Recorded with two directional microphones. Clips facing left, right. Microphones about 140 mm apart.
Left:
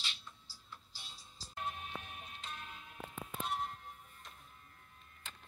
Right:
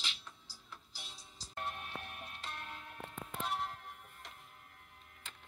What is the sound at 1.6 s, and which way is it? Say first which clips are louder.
Music: even; 65° right (ahead or behind).